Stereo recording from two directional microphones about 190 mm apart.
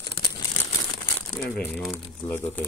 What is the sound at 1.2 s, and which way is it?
Speech, 10° left (ahead or behind).